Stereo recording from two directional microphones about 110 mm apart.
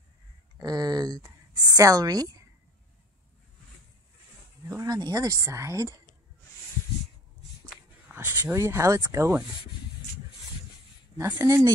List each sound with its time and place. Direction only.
0.6 s a woman's voice: 35° right (ahead or behind)
4.6 s speech: 30° right (ahead or behind)
8.1 s speech: 20° right (ahead or behind)
11.4 s speech: 30° right (ahead or behind)